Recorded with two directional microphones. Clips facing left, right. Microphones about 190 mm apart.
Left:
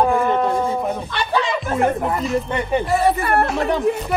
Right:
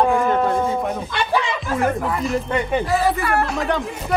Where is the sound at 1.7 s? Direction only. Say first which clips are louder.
Left 1 dB; 25° left (ahead or behind).